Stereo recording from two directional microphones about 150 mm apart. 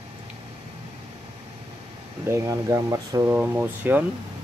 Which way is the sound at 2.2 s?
20° right (ahead or behind).